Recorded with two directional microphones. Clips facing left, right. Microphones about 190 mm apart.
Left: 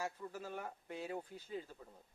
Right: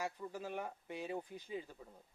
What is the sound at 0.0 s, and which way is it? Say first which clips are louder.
Speech: right 1 dB; 15° right (ahead or behind).